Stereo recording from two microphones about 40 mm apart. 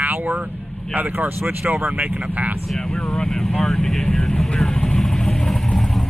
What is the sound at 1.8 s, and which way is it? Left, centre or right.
Speech, right.